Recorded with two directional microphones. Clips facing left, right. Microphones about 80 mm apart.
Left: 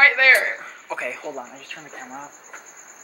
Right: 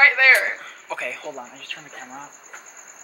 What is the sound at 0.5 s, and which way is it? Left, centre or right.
Speech, centre.